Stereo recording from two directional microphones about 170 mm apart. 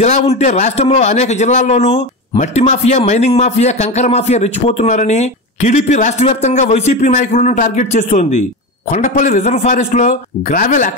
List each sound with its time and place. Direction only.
0.0 s a man's voice: 40° left (ahead or behind)